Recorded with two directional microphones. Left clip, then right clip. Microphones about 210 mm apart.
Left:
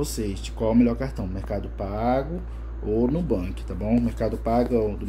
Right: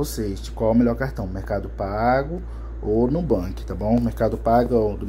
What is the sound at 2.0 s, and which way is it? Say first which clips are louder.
Speech: right 4 dB; 10° left (ahead or behind).